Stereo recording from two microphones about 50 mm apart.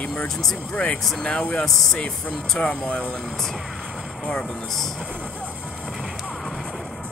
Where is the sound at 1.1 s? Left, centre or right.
Centre.